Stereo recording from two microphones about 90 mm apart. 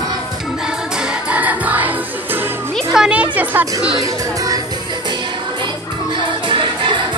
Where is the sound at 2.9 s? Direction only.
10° right (ahead or behind).